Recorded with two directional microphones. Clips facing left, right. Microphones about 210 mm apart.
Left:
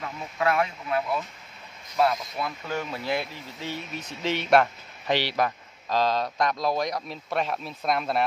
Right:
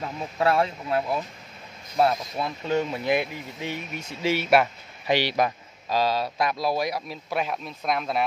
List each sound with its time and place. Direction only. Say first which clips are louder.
0.0 s speech: right 3 dB; 30° right (ahead or behind); by 8.3 s centre (ahead or behind)